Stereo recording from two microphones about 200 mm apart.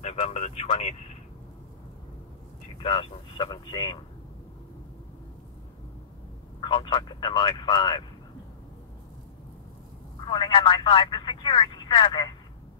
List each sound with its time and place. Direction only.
0.0 s vehicle: 30° left (ahead or behind)
2.8 s speech: 30° left (ahead or behind)
6.6 s speech: 25° left (ahead or behind)
10.2 s speech: 25° left (ahead or behind)